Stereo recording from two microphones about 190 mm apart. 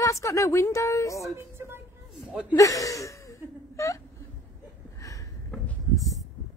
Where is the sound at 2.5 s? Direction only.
20° left (ahead or behind).